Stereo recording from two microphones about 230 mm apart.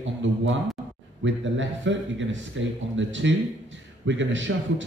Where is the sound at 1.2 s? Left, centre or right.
Right.